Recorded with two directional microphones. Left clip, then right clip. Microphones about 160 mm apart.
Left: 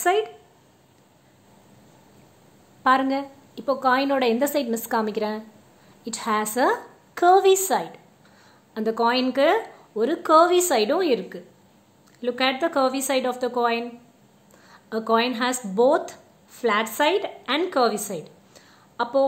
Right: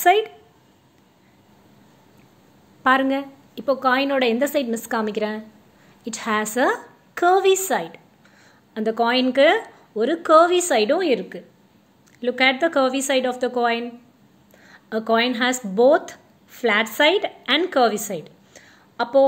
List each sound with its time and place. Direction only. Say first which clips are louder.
0.0 s a woman's voice: right 5 dB; 15° right (ahead or behind)
2.8 s a woman's voice: right 2 dB; 10° right (ahead or behind)